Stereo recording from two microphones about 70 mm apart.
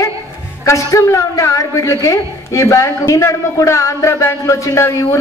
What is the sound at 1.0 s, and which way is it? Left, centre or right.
A woman's voice, left.